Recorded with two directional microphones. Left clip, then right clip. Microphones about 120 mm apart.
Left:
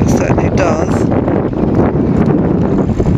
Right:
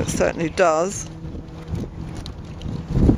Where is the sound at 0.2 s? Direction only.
25° right (ahead or behind).